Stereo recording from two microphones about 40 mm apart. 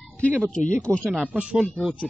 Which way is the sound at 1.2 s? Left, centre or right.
Right.